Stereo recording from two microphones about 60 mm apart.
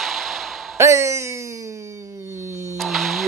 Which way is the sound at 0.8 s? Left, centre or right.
Right.